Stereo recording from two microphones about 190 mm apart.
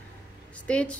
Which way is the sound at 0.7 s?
5° left (ahead or behind).